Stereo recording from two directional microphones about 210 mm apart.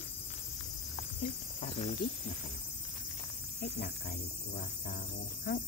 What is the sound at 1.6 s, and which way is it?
Speech, 30° left (ahead or behind).